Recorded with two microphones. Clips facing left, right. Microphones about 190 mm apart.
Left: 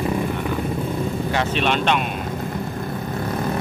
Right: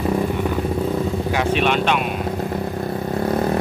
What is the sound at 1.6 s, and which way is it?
Speech, 5° right (ahead or behind).